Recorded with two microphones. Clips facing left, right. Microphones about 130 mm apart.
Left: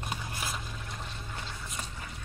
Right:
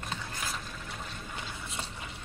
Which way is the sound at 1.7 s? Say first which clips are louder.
Right 1 dB; 30° right (ahead or behind).